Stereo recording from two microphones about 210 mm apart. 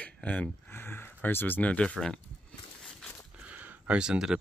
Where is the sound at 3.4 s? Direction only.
10° right (ahead or behind).